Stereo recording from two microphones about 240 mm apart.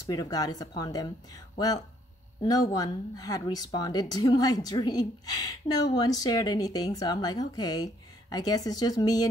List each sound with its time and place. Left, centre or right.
0.0 s speech: centre
2.4 s speech: centre